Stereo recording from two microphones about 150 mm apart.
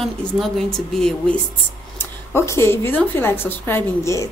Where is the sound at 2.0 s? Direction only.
15° left (ahead or behind).